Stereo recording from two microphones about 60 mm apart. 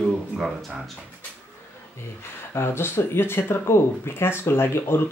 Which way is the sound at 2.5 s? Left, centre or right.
Left.